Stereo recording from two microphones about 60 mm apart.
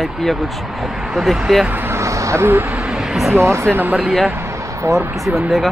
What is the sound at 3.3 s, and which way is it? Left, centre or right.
Speech, right.